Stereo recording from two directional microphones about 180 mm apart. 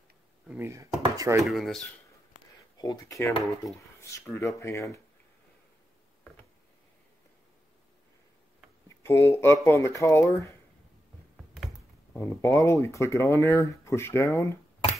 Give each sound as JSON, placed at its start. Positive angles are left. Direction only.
{"t": 0.5, "sound": "speech", "side_deg": -15}
{"t": 1.5, "sound": "speech", "side_deg": 0}
{"t": 2.8, "sound": "speech", "side_deg": 20}
{"t": 8.8, "sound": "speech", "side_deg": 15}
{"t": 12.2, "sound": "speech", "side_deg": 15}